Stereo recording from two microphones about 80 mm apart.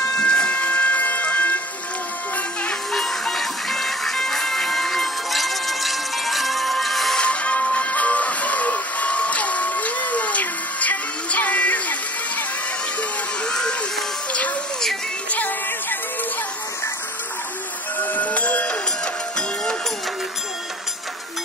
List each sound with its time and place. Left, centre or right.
0.2 s vehicle: centre
2.9 s music: centre
7.2 s music: centre
13.5 s a sound: centre
15.3 s music: left
18.0 s music: left
19.3 s a sound: centre